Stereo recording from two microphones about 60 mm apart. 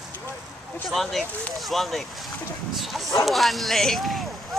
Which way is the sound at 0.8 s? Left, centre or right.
Centre.